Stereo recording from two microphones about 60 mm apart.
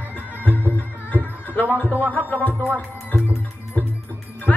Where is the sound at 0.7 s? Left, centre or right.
Left.